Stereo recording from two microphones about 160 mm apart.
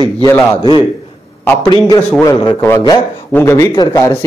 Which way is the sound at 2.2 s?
20° left (ahead or behind).